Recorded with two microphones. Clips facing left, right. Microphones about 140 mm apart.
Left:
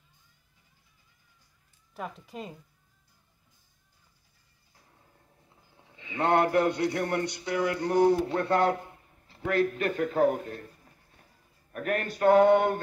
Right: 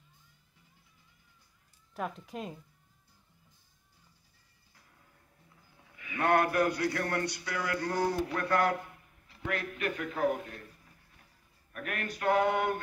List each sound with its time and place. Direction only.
2.0 s speech: centre (ahead or behind)
5.8 s a man's voice: 25° left (ahead or behind)
11.7 s a sound: 35° left (ahead or behind)